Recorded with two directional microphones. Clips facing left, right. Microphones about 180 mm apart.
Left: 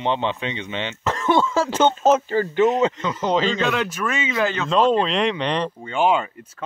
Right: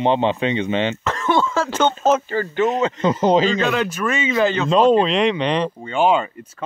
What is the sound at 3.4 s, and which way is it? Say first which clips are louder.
Speech: right 3 dB; 10° right (ahead or behind).